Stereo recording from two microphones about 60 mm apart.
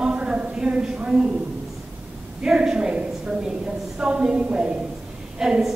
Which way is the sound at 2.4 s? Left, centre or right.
Centre.